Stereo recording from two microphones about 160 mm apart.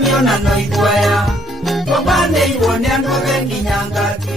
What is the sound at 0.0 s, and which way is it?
Music, centre (ahead or behind).